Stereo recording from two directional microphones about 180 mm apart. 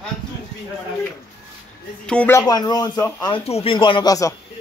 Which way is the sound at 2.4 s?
20° left (ahead or behind).